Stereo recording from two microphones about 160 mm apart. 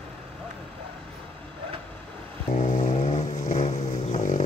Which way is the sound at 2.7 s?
50° left (ahead or behind).